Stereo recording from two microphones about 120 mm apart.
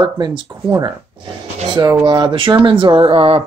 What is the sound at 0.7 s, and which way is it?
Speech, 25° right (ahead or behind).